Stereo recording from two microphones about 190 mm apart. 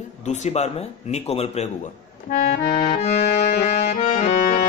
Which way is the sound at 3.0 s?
30° left (ahead or behind).